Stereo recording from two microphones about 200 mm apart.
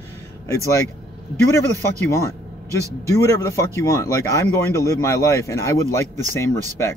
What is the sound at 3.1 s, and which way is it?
Speech, 15° left (ahead or behind).